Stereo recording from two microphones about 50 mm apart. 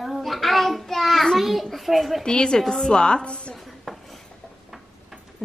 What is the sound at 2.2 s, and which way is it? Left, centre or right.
Speech, centre.